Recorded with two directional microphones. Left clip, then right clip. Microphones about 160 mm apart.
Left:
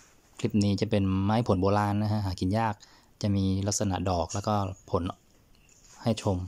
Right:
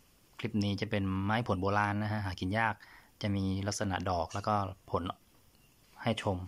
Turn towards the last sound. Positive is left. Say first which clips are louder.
# left 4 dB
turn(degrees=25)  # may be behind; listen again after turning